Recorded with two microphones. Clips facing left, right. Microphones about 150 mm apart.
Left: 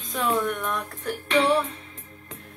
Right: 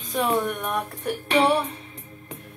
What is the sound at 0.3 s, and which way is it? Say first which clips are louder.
Speech: left 2 dB; 20° right (ahead or behind).